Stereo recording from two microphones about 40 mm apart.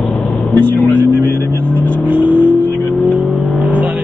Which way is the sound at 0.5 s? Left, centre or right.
Left.